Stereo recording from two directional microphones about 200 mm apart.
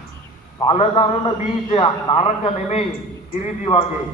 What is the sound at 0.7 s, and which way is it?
A man's voice, 30° left (ahead or behind).